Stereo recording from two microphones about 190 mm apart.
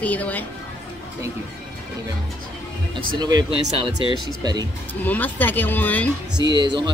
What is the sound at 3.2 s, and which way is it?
Speech, 20° right (ahead or behind).